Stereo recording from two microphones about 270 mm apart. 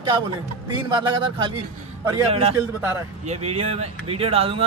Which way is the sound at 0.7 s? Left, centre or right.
Centre.